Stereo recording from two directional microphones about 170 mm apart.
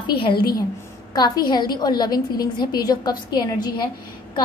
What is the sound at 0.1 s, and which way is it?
Speech, 65° left (ahead or behind).